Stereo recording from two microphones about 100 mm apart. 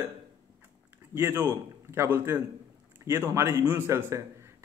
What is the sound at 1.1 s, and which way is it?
A man's voice, 25° right (ahead or behind).